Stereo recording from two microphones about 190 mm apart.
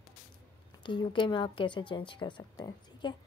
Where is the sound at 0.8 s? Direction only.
25° left (ahead or behind).